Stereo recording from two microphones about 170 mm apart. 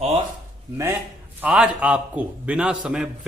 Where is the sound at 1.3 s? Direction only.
10° right (ahead or behind).